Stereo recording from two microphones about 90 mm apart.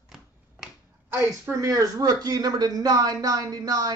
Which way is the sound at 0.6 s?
5° right (ahead or behind).